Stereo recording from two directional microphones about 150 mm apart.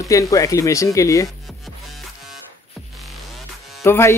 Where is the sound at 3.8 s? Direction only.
15° left (ahead or behind).